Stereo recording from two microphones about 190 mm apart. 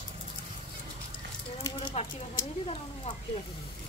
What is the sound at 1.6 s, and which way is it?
A woman's voice, 25° left (ahead or behind).